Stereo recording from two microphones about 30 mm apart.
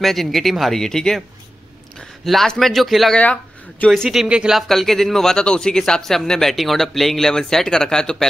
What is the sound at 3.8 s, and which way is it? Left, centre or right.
Speech, left.